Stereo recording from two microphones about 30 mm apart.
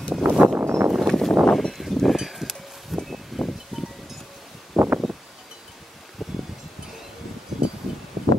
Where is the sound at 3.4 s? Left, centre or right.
Centre.